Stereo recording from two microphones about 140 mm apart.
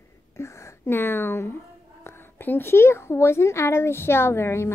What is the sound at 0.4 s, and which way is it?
A woman's voice, 15° left (ahead or behind).